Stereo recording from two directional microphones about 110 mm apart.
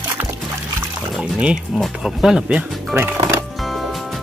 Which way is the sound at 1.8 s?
5° right (ahead or behind).